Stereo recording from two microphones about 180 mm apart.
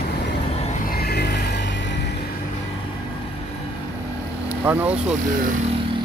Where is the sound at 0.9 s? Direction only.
60° left (ahead or behind); by 1.9 s 80° left.